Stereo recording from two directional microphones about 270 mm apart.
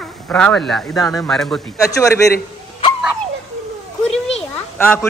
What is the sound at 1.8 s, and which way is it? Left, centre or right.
Speech, centre.